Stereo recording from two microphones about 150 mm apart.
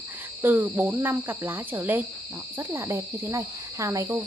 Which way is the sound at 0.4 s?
15° right (ahead or behind).